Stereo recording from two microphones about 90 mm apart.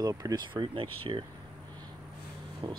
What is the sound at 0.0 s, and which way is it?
Speech, 45° right (ahead or behind).